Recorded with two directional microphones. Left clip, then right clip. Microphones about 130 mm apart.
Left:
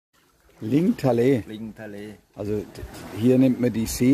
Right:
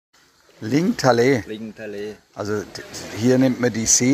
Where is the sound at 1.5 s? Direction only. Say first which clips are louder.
Right 5 dB; 65° left (ahead or behind).